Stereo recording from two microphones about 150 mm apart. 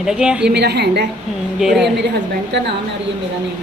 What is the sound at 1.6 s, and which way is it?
Speech, centre (ahead or behind).